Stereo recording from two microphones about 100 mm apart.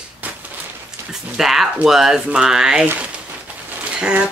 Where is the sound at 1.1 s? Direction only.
5° right (ahead or behind).